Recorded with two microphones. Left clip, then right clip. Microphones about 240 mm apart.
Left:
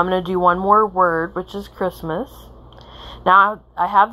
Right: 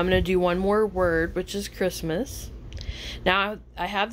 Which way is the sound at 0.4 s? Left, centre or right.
Centre.